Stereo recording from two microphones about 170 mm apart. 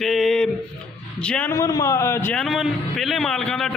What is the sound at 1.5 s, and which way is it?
Speech, 20° left (ahead or behind).